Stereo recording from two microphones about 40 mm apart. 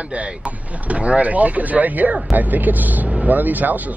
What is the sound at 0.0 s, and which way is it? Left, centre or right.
Speech, right.